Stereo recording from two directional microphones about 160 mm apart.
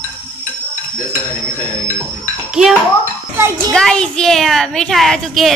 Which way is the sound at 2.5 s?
5° right (ahead or behind).